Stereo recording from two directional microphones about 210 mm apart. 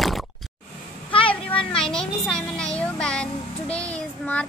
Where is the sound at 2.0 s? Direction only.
5° left (ahead or behind).